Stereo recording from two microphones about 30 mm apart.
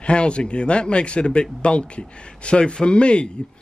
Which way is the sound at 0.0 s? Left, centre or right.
Left.